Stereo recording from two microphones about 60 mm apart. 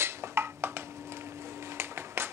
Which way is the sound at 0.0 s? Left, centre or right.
Right.